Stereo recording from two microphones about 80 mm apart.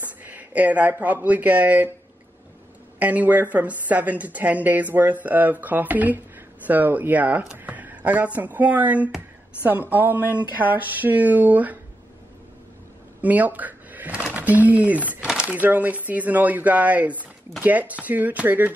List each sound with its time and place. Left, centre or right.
0.2 s speech: centre
3.0 s speech: centre
13.2 s a sound: right
14.3 s speech: centre
15.1 s a sound: centre
15.5 s speech: right